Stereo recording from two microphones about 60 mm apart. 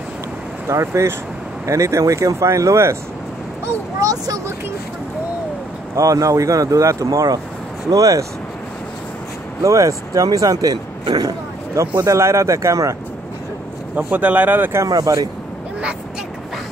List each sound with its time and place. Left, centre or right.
0.7 s speech: right
4.0 s speech: right
5.9 s speech: right
9.6 s speech: right
11.8 s speech: right
13.9 s speech: right
14.9 s speech: right